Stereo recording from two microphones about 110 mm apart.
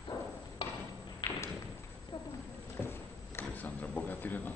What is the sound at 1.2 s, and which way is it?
Thump, 40° left (ahead or behind).